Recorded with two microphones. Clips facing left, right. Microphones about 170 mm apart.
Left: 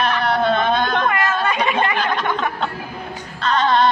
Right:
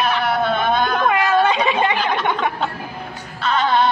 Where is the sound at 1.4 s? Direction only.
20° right (ahead or behind).